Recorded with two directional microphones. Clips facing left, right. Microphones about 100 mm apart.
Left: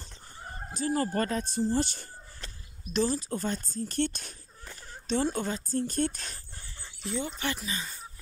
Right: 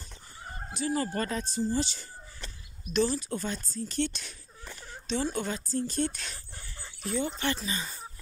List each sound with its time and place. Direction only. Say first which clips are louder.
0.7 s speech: left 2 dB; 40° left (ahead or behind)
2.8 s speech: right 1 dB; 35° left (ahead or behind)
5.8 s speech: left 1 dB; 50° left (ahead or behind)
7.3 s speech: right 2 dB; 5° left (ahead or behind)